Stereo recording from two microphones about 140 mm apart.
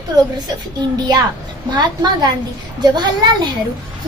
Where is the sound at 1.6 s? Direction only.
30° right (ahead or behind).